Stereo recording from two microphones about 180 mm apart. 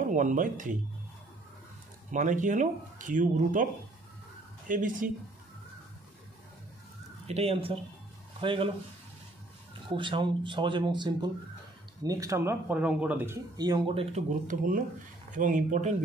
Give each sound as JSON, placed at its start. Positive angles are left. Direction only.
{"t": 0.1, "sound": "speech", "side_deg": -45}
{"t": 2.0, "sound": "speech", "side_deg": -45}
{"t": 4.6, "sound": "speech", "side_deg": -45}
{"t": 7.2, "sound": "speech", "side_deg": -35}
{"t": 9.8, "sound": "speech", "side_deg": -25}
{"t": 13.6, "sound": "speech", "side_deg": -25}
{"t": 14.5, "sound": "speech", "side_deg": -45}